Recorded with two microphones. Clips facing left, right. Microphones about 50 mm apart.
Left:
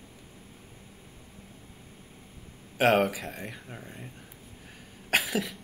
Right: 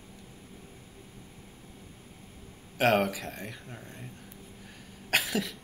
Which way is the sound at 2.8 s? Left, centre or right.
Centre.